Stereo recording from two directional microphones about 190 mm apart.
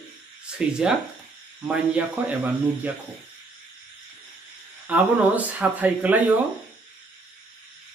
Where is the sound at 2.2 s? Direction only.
10° right (ahead or behind).